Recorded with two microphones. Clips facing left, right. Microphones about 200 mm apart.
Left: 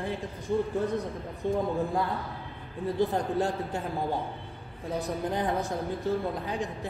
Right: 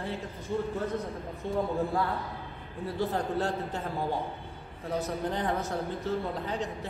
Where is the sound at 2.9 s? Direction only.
15° left (ahead or behind).